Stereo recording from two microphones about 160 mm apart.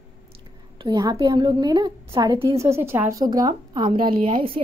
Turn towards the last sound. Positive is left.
turn(degrees=-35)  # may be behind; listen again after turning